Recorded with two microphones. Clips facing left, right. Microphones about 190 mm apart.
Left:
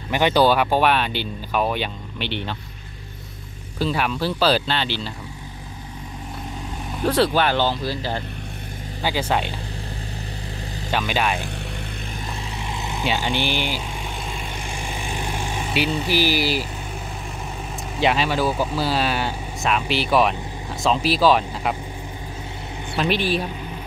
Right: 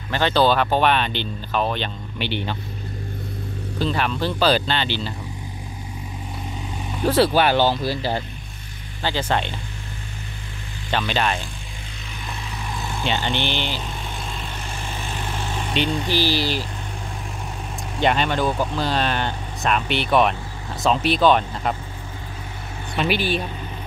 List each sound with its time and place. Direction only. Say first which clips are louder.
0.1 s speech: left 1 dB; 15° left (ahead or behind)
2.1 s speech: right 2 dB; centre (ahead or behind)
3.8 s speech: even; 5° left (ahead or behind)
6.9 s speech: right 1 dB; centre (ahead or behind)
9.0 s speech: even; 10° left (ahead or behind)
10.9 s speech: even; 10° left (ahead or behind)
12.6 s vehicle: even; 20° left (ahead or behind)
13.0 s vehicle: left 1 dB; 5° left (ahead or behind)
17.9 s speech: even; 5° left (ahead or behind)
22.9 s speech: even; centre (ahead or behind)